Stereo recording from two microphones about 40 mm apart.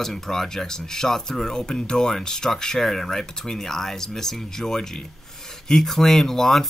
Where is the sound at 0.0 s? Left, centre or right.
Centre.